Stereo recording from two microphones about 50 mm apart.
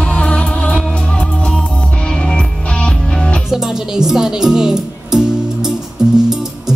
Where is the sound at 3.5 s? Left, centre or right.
Centre.